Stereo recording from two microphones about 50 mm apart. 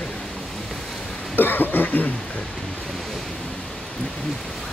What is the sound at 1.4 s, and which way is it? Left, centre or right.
Cough, left.